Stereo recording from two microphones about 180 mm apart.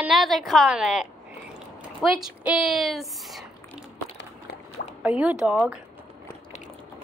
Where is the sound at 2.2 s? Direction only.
5° right (ahead or behind).